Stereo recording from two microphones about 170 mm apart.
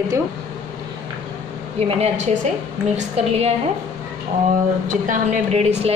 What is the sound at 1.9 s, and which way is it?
A woman's voice, 40° right (ahead or behind).